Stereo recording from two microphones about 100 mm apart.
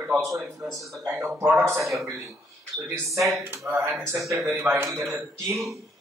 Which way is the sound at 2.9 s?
30° right (ahead or behind).